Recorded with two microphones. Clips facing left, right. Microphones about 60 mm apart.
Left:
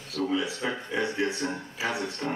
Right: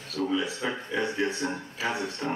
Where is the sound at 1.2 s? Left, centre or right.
Right.